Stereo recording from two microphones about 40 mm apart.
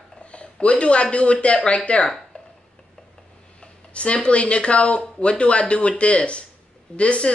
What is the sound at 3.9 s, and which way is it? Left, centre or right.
Speech, left.